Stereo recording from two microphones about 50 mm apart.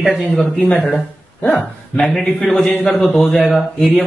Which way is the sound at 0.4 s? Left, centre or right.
Left.